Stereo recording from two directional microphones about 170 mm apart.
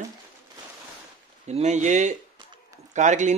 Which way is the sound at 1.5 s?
45° right (ahead or behind).